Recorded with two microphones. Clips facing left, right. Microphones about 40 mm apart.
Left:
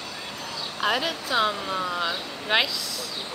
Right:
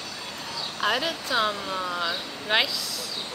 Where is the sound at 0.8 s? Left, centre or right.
Centre.